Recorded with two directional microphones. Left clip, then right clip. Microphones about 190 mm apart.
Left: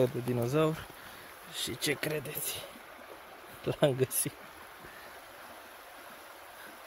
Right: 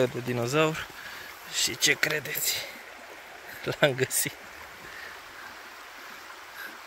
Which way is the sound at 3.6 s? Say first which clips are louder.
Right 4 dB; 15° left (ahead or behind).